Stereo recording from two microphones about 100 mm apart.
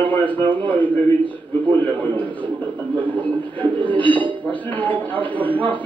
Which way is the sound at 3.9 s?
15° left (ahead or behind).